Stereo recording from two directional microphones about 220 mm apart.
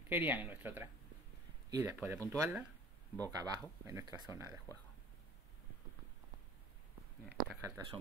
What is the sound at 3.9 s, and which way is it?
Speech, 15° right (ahead or behind).